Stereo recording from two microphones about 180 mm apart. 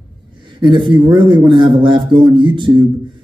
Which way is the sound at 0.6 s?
25° right (ahead or behind).